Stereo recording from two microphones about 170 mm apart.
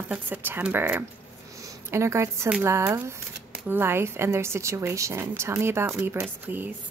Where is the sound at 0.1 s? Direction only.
10° right (ahead or behind).